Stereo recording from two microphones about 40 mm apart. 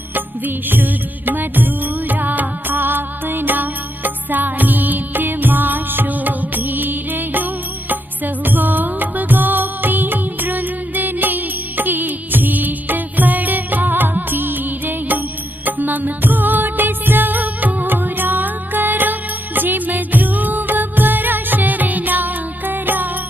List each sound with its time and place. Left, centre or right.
0.7 s music: right
8.5 s music: right